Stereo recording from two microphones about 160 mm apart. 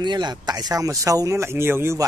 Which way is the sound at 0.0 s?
25° right (ahead or behind).